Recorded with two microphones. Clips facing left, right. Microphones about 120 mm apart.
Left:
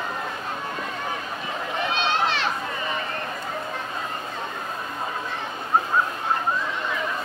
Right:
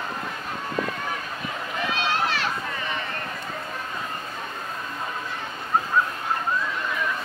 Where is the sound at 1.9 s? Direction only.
25° left (ahead or behind).